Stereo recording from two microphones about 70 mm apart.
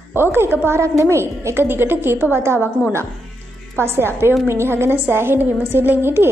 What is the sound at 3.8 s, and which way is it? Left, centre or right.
A woman's voice, right.